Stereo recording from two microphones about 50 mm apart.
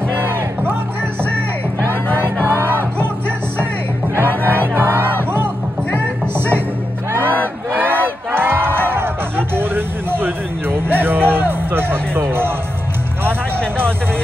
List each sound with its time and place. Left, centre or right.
0.1 s music: right
2.4 s music: right
7.1 s battle cry: right
9.6 s music: right